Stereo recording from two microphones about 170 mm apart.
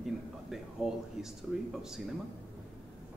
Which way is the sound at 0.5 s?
5° right (ahead or behind).